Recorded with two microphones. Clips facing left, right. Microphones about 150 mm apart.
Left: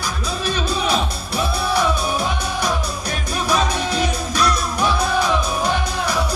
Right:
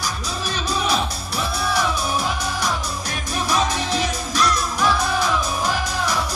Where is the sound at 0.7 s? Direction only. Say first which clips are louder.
Right 1 dB; 60° left (ahead or behind).